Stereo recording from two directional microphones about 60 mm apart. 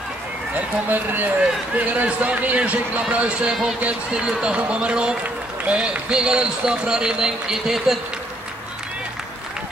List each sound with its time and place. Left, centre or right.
0.8 s a man's voice: right; by 8.0 s centre